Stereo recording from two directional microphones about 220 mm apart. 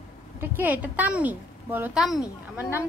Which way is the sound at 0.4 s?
10° right (ahead or behind).